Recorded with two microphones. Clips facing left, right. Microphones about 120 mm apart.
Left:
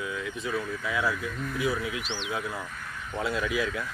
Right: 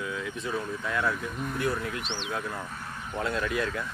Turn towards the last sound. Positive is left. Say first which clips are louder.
# even
turn(degrees=0)  # may be behind; listen again after turning